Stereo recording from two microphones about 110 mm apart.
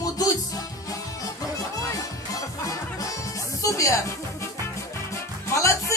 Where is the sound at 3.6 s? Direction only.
30° left (ahead or behind).